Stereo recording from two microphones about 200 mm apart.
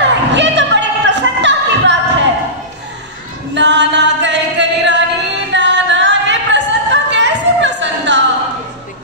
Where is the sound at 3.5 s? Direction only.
60° right (ahead or behind).